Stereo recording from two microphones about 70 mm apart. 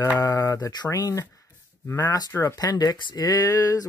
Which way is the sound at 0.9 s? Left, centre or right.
Left.